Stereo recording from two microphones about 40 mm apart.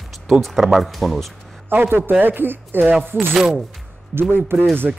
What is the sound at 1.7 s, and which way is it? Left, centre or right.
Speech, right.